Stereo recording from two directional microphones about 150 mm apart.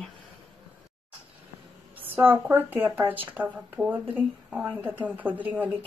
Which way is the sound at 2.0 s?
15° right (ahead or behind).